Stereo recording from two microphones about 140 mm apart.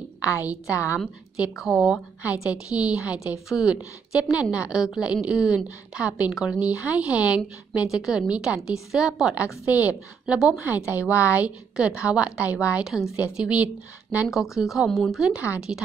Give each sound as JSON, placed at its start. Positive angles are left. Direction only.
{"t": 0.2, "sound": "a woman's voice", "side_deg": 25}
{"t": 0.9, "sound": "a woman's voice", "side_deg": -5}